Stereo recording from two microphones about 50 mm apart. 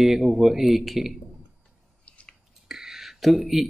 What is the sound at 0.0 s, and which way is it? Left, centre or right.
Speech, centre.